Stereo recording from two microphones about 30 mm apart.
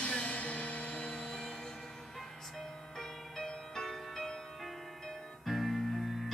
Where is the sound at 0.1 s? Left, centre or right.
Left.